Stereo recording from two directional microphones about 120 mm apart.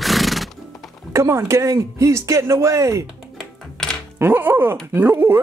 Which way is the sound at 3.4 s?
5° left (ahead or behind).